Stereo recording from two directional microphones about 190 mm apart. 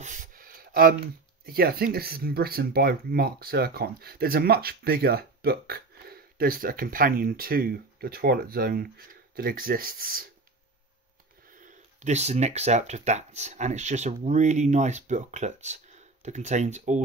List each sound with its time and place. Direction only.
0.0 s a sound: 45° right (ahead or behind)
1.4 s speech: 55° right (ahead or behind)
11.5 s speech: 40° right (ahead or behind)